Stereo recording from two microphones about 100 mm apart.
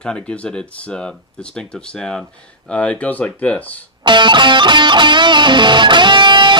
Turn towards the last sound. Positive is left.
turn(degrees=-50)  # may be behind; listen again after turning